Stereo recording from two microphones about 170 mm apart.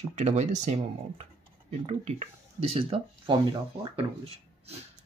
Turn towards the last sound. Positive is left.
turn(degrees=-35)  # may be behind; listen again after turning